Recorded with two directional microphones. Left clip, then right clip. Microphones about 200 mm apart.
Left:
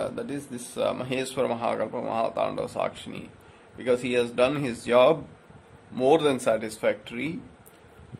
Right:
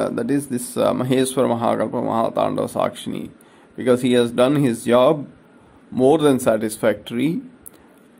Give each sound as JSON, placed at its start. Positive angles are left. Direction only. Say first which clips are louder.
{"t": 0.0, "sound": "speech", "louder": "right 10 dB", "side_deg": -25}